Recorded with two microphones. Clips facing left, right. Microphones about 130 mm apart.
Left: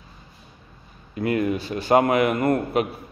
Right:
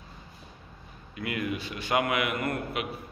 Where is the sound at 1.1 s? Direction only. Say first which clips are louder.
Left 9 dB; 40° left (ahead or behind).